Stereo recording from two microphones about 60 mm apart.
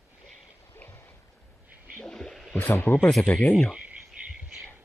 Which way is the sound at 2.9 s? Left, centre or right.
Left.